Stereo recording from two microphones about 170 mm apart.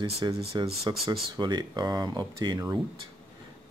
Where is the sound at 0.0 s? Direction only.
30° right (ahead or behind).